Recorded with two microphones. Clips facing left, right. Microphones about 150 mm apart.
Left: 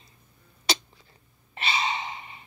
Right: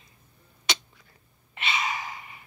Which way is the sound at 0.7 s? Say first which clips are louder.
Left 3 dB; 35° left (ahead or behind).